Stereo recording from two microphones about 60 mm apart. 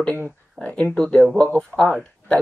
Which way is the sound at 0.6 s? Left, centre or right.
Left.